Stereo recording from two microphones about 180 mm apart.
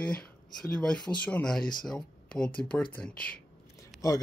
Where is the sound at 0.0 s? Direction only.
5° left (ahead or behind).